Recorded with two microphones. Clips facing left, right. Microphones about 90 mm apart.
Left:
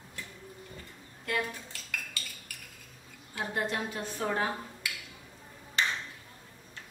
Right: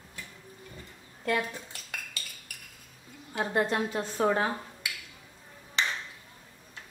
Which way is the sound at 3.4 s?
35° right (ahead or behind).